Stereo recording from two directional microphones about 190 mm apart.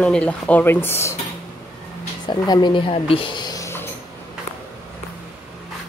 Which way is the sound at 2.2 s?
20° left (ahead or behind).